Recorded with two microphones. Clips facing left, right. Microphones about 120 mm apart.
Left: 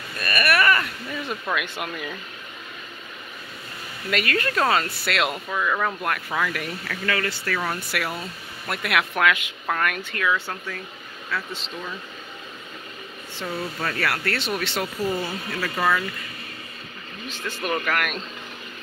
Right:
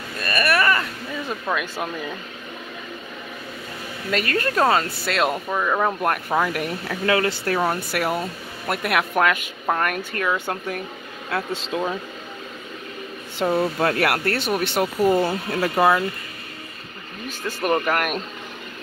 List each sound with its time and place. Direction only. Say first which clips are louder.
0.3 s a sound: right 1 dB; 30° right (ahead or behind)
1.5 s speech: right 3 dB; 30° right (ahead or behind)
4.1 s speech: right 2 dB; 35° right (ahead or behind)
5.5 s speech: right 3 dB; 25° right (ahead or behind)
6.0 s speech: right 5 dB; 35° right (ahead or behind)
6.9 s speech: right 6 dB; 25° right (ahead or behind); by 10.6 s 45° right (ahead or behind)
11.3 s speech: right 4 dB; 55° right (ahead or behind)
11.7 s speech: right 11 dB; 85° right
13.5 s speech: right 8 dB; 55° right (ahead or behind)
17.5 s speech: right 5 dB; 45° right (ahead or behind)